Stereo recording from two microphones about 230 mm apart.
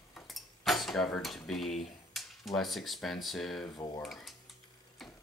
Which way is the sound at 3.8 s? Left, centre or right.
Centre.